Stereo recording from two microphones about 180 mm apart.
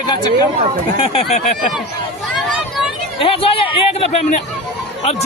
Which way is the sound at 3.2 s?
30° left (ahead or behind).